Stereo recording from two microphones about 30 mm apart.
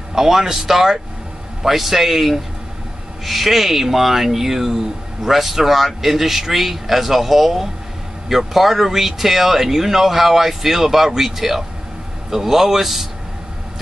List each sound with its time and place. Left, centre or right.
0.1 s speech: centre